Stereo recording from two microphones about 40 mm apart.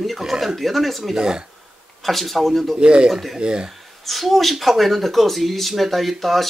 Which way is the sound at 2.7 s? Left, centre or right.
Right.